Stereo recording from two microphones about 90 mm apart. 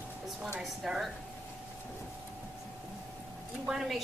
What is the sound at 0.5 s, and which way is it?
Speech, 5° right (ahead or behind).